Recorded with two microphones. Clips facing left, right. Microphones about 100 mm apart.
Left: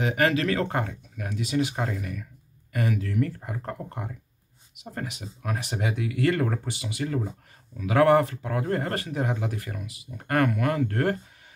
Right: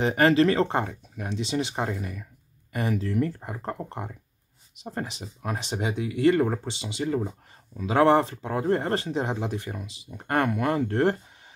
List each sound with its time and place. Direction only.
0.0 s speech: 30° right (ahead or behind)